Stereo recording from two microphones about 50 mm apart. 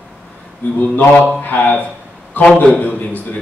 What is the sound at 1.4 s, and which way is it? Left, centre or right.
Speech, left.